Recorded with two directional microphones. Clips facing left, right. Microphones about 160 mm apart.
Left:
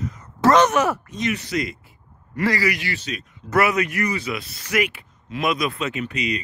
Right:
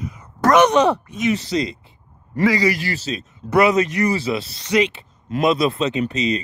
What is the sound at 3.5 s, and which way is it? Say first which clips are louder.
Speech: right 4 dB; 20° right (ahead or behind).